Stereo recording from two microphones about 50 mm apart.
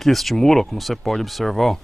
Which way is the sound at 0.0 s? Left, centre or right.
Centre.